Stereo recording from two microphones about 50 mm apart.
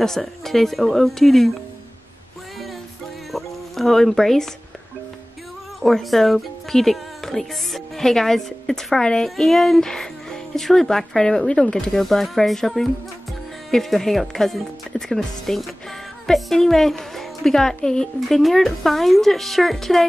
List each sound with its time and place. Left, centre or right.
0.0 s a woman's voice: centre
3.3 s music: centre
5.8 s a woman's voice: centre